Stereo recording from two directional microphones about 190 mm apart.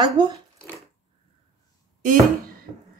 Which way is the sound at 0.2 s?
25° right (ahead or behind).